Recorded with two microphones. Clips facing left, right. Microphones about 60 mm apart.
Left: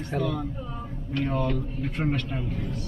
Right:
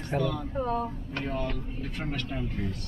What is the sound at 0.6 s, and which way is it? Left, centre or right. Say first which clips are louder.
Speech: right 8 dB; right.